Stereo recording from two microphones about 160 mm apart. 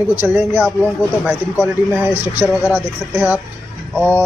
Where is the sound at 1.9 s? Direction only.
15° right (ahead or behind).